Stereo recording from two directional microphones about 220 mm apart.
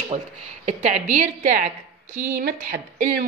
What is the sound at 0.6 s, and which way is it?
A woman's voice, 35° right (ahead or behind).